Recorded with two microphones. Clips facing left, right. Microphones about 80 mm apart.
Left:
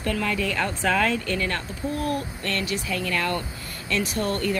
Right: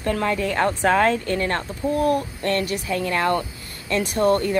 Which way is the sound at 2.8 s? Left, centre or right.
Right.